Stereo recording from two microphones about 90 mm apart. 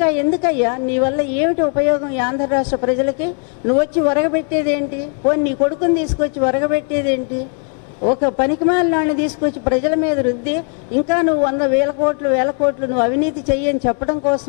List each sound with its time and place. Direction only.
0.0 s a woman's voice: 15° left (ahead or behind)